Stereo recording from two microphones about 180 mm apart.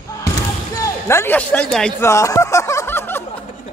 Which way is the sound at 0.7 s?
15° left (ahead or behind).